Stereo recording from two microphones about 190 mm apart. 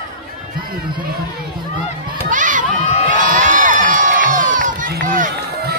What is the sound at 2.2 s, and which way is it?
Crowd, 45° right (ahead or behind).